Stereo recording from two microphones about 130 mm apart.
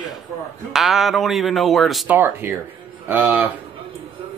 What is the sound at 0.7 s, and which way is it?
Speech, centre (ahead or behind).